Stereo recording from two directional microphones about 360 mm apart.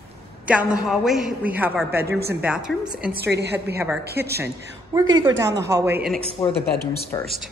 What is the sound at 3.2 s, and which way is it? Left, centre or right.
Speech, right.